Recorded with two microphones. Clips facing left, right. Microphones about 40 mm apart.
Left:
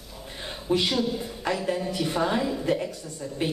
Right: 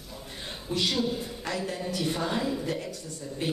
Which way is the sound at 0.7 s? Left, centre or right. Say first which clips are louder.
Left 5 dB; left.